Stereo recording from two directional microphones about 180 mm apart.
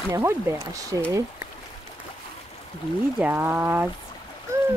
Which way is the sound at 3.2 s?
10° right (ahead or behind).